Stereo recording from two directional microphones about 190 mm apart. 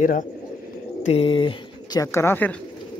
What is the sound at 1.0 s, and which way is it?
Speech, 30° left (ahead or behind).